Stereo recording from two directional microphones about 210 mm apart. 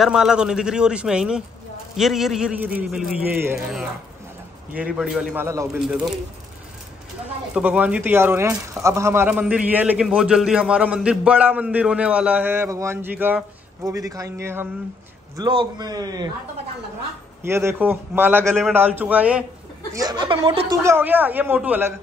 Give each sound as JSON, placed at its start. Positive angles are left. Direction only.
{"t": 0.0, "sound": "a man's voice", "side_deg": 0}
{"t": 7.5, "sound": "a man's voice", "side_deg": -5}
{"t": 17.4, "sound": "speech", "side_deg": -10}
{"t": 18.4, "sound": "a man's voice", "side_deg": 0}
{"t": 19.9, "sound": "a man's voice", "side_deg": -15}